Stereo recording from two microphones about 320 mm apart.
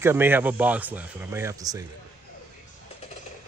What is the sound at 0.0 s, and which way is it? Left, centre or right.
Speech, centre.